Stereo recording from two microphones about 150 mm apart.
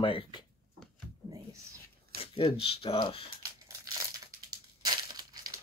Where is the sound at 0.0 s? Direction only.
35° left (ahead or behind).